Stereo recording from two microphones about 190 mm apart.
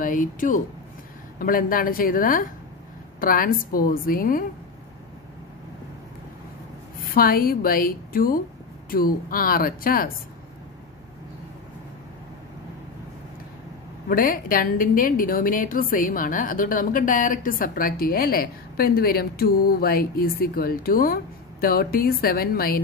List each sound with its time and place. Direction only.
0.0 s a woman's voice: 45° left (ahead or behind)
7.2 s a woman's voice: 50° left (ahead or behind)
14.0 s a woman's voice: 50° left (ahead or behind)